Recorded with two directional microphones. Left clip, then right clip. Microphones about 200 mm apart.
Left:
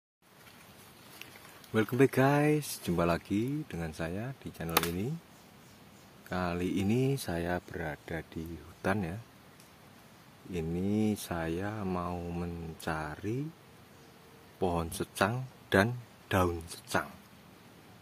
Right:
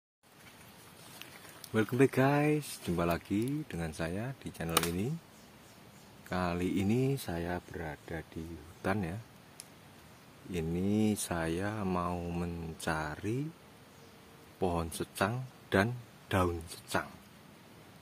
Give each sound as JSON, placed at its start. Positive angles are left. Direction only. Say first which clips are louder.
{"t": 1.2, "sound": "speech", "louder": "even", "side_deg": 10}
{"t": 6.2, "sound": "speech", "louder": "even", "side_deg": 0}
{"t": 8.8, "sound": "speech", "louder": "left 2 dB", "side_deg": 10}
{"t": 10.5, "sound": "speech", "louder": "even", "side_deg": 0}
{"t": 14.6, "sound": "speech", "louder": "left 1 dB", "side_deg": 10}